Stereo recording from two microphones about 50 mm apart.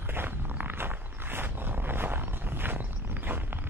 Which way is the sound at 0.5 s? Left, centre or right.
Right.